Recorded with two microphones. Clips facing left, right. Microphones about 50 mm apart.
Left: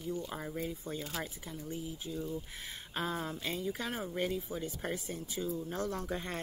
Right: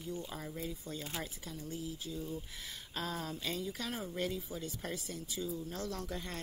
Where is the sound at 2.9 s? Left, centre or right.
Left.